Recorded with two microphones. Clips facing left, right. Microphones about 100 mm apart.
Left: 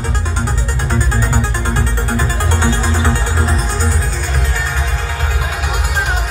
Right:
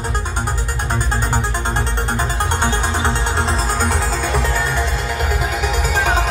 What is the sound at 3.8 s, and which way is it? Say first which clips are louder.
Music: right 1 dB; 60° right (ahead or behind).